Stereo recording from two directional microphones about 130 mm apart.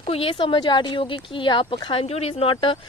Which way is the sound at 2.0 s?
50° left (ahead or behind).